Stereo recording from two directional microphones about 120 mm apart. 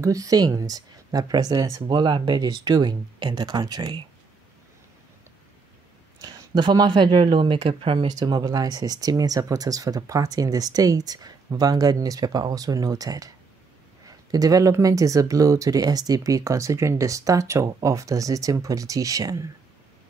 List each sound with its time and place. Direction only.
0.0 s speech: 30° right (ahead or behind)
6.2 s speech: 35° right (ahead or behind)
8.1 s speech: 35° right (ahead or behind)